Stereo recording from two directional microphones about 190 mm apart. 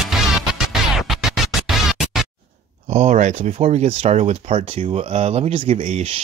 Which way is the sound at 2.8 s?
35° right (ahead or behind).